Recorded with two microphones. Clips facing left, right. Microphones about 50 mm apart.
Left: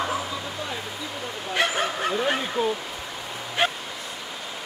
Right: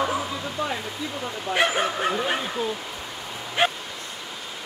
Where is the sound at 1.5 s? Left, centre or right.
Centre.